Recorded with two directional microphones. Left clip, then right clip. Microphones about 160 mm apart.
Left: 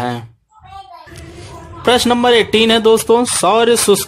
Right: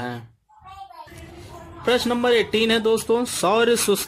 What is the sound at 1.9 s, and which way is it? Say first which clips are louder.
A man's voice: left 8 dB; 25° left (ahead or behind).